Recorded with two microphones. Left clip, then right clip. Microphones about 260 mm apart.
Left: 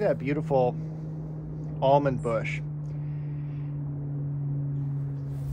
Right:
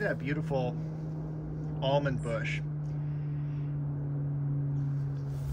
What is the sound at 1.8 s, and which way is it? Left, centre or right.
Speech, centre.